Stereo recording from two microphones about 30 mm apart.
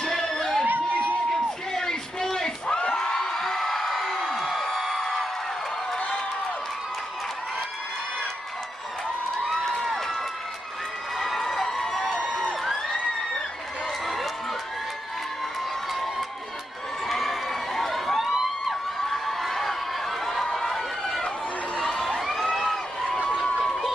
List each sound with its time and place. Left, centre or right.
0.0 s crowd: centre
0.7 s crowd: right
1.8 s a sound: centre
2.7 s crowd: left
3.1 s music: centre
5.9 s a sound: left
9.8 s crowd: centre
11.1 s crowd: centre
12.1 s crowd: left
14.0 s run: centre
15.9 s crowd: centre
17.1 s a sound: centre
21.7 s crowd: centre